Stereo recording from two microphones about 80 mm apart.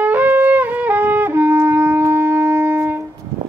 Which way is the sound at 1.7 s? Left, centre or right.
Right.